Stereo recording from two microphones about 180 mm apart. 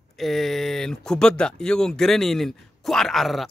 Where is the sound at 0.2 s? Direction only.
Centre (ahead or behind).